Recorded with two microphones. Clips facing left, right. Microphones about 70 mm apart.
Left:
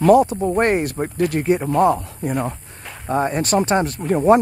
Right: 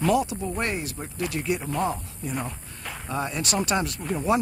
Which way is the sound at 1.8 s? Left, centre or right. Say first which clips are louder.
Left 11 dB; left.